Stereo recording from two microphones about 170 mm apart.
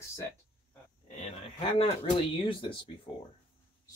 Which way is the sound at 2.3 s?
30° left (ahead or behind).